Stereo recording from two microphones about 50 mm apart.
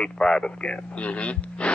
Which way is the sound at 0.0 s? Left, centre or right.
Centre.